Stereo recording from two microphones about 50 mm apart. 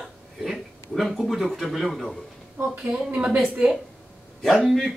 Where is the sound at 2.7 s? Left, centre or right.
Right.